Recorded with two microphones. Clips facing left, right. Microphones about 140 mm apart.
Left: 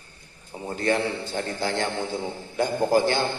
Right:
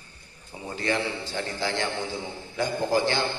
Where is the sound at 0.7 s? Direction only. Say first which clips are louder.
Left 4 dB; 45° left (ahead or behind).